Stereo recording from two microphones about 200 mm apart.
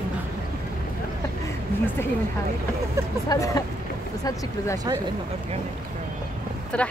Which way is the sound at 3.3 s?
15° left (ahead or behind).